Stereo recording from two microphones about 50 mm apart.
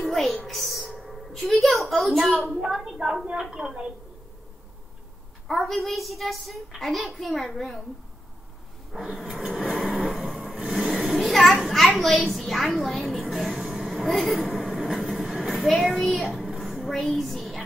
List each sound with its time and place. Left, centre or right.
0.0 s music: centre
0.5 s a sound: centre
1.5 s a child's voice: centre
2.5 s a woman's voice: centre
5.5 s a child's voice: centre
8.9 s a sound: centre
9.9 s vehicle: centre
10.6 s a sound: centre
11.1 s a child's voice: centre
13.4 s train: centre
15.6 s a child's voice: centre